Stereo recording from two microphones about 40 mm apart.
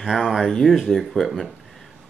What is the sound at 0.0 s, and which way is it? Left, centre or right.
Speech, centre.